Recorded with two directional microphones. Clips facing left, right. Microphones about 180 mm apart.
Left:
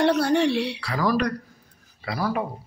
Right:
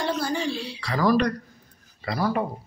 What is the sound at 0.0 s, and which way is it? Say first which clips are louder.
Speech: left 7 dB; 70° left (ahead or behind).